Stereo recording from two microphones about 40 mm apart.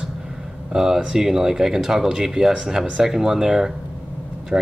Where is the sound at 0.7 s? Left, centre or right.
Centre.